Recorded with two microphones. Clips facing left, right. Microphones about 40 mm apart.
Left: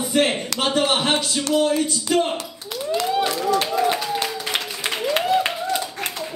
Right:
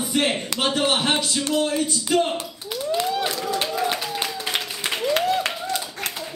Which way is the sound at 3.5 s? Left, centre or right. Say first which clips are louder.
Left 5 dB; centre.